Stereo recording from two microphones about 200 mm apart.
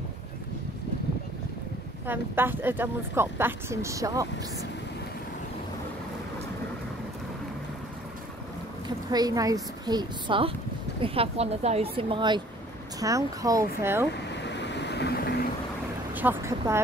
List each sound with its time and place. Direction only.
2.0 s speech: 10° right (ahead or behind)
9.1 s a woman's voice: 20° right (ahead or behind)
14.4 s vehicle: 60° left (ahead or behind)
16.2 s speech: 10° right (ahead or behind)